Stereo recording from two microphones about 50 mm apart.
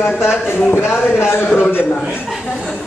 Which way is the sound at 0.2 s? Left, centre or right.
Left.